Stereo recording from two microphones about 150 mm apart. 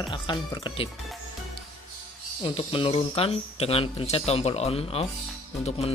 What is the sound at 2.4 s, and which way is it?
Speech, 35° left (ahead or behind).